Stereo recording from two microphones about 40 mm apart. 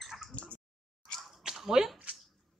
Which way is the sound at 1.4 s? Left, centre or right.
Centre.